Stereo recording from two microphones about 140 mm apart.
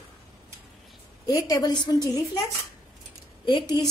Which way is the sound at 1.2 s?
25° left (ahead or behind).